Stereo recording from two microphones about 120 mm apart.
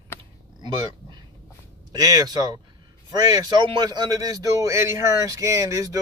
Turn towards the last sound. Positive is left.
turn(degrees=-30)  # may be behind; listen again after turning